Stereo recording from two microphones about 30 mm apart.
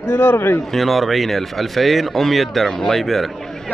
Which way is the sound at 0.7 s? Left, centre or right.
Centre.